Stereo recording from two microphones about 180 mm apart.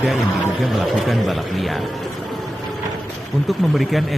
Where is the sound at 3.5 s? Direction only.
Centre (ahead or behind).